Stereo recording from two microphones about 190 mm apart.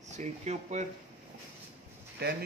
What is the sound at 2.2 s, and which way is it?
Speech, 55° right (ahead or behind).